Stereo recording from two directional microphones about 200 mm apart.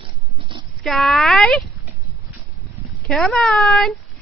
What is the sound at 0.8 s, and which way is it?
Speech, centre (ahead or behind).